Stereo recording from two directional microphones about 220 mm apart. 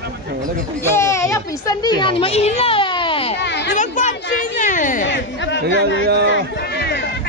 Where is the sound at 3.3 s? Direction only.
50° left (ahead or behind).